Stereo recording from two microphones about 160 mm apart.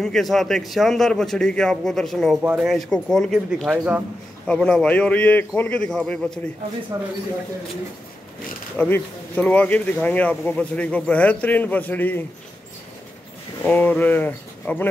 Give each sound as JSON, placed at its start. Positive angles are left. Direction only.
{"t": 0.0, "sound": "a man's voice", "side_deg": 0}
{"t": 6.9, "sound": "speech", "side_deg": -25}
{"t": 8.7, "sound": "speech", "side_deg": 10}
{"t": 13.7, "sound": "speech", "side_deg": 10}